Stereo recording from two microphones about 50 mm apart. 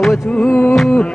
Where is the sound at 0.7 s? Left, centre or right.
Centre.